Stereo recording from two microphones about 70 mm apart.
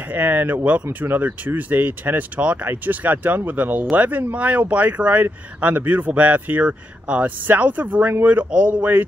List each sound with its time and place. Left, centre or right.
0.1 s speech: right